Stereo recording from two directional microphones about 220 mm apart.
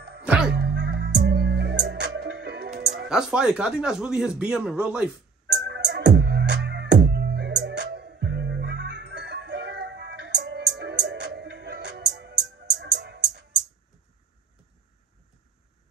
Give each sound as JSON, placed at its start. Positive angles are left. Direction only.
{"t": 0.2, "sound": "music", "side_deg": -5}
{"t": 0.6, "sound": "music", "side_deg": -50}
{"t": 3.1, "sound": "speech", "side_deg": -5}
{"t": 5.5, "sound": "music", "side_deg": -50}